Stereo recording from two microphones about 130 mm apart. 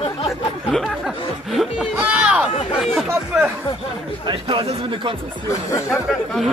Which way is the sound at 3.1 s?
20° right (ahead or behind).